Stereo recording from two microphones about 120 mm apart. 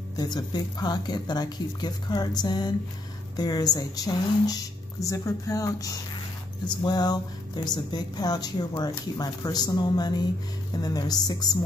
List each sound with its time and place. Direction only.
0.1 s a woman's voice: 35° left (ahead or behind)